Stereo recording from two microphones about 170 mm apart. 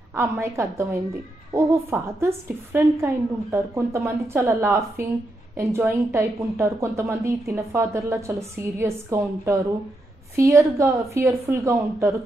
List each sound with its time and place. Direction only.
0.1 s a woman's voice: 15° right (ahead or behind)